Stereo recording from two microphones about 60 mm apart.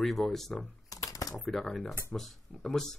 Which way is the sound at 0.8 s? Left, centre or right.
Left.